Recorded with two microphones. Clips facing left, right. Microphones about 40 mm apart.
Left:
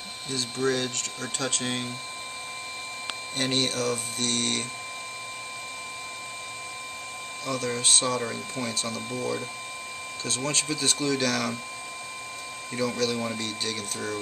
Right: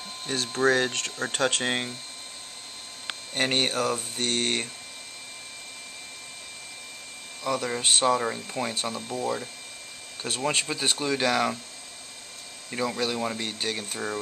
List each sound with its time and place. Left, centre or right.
0.3 s speech: right
3.3 s speech: right
7.5 s speech: right
12.7 s speech: right